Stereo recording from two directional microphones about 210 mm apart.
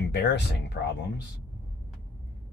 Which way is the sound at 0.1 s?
50° left (ahead or behind).